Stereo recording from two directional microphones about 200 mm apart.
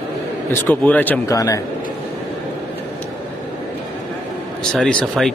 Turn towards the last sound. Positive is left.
turn(degrees=5)  # may be behind; listen again after turning